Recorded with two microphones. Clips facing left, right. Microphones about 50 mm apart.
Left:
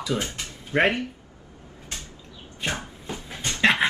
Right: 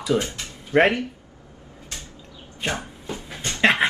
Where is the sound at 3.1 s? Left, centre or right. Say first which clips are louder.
Even; right.